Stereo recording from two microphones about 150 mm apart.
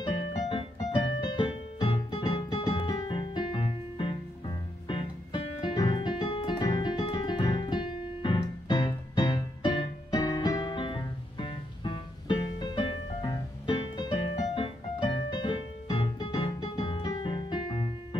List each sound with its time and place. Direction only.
0.0 s keyboard: 30° left (ahead or behind)
4.8 s music: 35° left (ahead or behind)
5.8 s keyboard: 30° left (ahead or behind)